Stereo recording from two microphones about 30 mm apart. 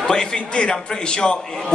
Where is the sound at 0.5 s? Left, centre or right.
Left.